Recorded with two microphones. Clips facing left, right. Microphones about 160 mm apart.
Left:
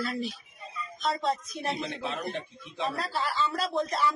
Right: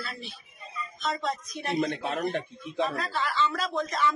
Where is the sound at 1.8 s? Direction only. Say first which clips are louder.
Right 4 dB; 50° right (ahead or behind).